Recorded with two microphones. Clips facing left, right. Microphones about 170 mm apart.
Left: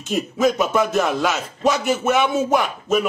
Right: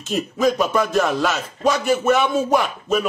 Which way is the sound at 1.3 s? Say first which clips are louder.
Even; 15° left (ahead or behind).